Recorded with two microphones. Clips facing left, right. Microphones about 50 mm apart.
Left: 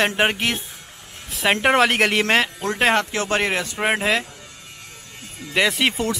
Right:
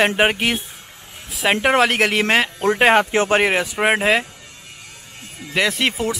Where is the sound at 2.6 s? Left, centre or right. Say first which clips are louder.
Right 5 dB; centre.